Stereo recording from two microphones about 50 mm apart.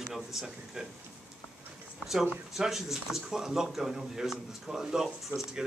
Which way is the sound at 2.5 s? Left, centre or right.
Centre.